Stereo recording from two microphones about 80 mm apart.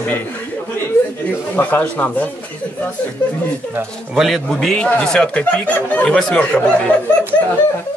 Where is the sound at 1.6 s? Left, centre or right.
Left.